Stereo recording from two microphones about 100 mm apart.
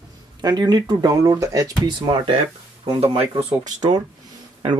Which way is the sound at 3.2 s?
80° right.